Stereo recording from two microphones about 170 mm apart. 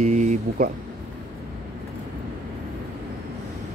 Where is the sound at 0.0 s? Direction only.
45° right (ahead or behind).